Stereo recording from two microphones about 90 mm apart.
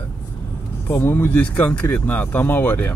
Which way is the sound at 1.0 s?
20° left (ahead or behind).